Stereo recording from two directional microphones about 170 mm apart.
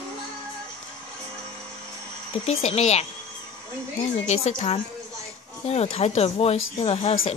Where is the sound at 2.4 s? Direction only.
35° left (ahead or behind).